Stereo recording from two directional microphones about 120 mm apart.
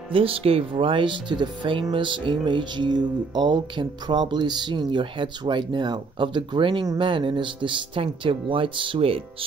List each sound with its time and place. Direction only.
0.1 s speech: 50° right (ahead or behind)